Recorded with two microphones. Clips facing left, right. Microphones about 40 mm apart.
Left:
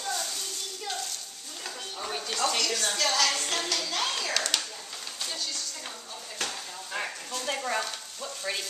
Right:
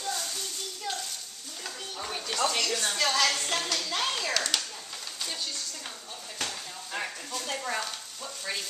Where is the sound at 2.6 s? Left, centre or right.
Centre.